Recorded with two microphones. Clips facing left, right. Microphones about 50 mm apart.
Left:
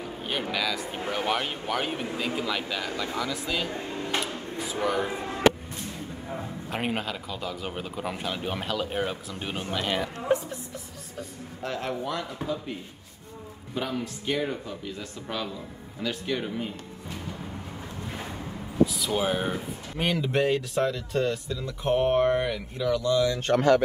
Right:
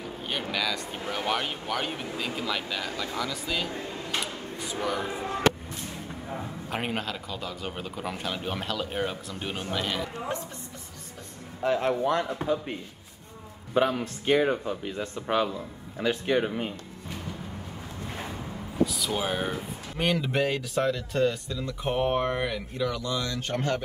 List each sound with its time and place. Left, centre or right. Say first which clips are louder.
0.0 s speech: left 2 dB; centre
4.2 s a sound: left 2 dB; centre
6.7 s speech: left 1 dB; centre
11.6 s speech: right 6 dB; centre
14.0 s speech: right 5 dB; right
18.9 s speech: left 2 dB; centre
23.5 s speech: left 7 dB; left